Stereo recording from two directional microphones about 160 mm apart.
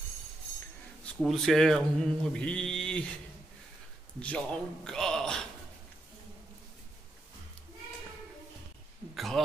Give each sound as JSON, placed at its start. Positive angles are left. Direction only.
{"t": 1.2, "sound": "speech", "side_deg": 0}
{"t": 4.2, "sound": "a man's voice", "side_deg": 5}
{"t": 9.1, "sound": "a sound", "side_deg": 0}